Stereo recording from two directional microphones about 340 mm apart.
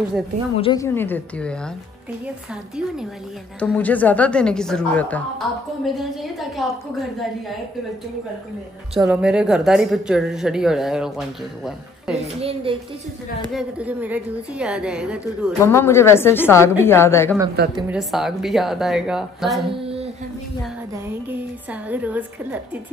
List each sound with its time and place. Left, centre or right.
0.6 s a woman's voice: centre
3.5 s a woman's voice: centre
6.5 s a woman's voice: centre
8.9 s a woman's voice: centre
12.4 s a woman's voice: centre
13.5 s a woman's voice: centre
15.6 s a woman's voice: centre
17.7 s a woman's voice: centre
19.7 s a sound: centre
20.9 s a woman's voice: centre